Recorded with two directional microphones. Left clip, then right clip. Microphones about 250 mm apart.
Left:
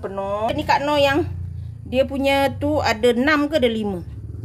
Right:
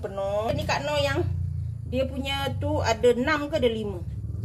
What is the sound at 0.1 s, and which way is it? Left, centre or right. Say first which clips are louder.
Speech: left 4 dB; left.